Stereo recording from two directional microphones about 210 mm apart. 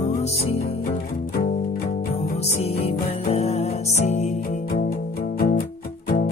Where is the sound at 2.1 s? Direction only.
30° left (ahead or behind).